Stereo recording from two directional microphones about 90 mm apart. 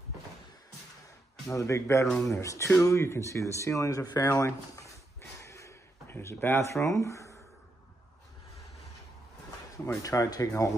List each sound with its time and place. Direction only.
1.5 s speech: 35° left (ahead or behind)
4.5 s speech: 30° left (ahead or behind)
5.4 s a sound: 35° left (ahead or behind)
9.8 s speech: 35° left (ahead or behind)